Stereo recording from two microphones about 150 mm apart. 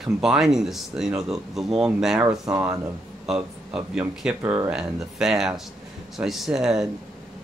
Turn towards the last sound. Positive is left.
turn(degrees=0)  # may be behind; listen again after turning